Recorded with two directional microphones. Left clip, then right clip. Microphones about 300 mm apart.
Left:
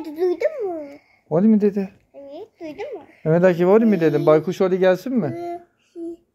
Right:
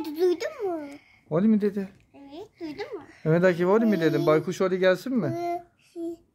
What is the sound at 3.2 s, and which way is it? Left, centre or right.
A man's voice, centre.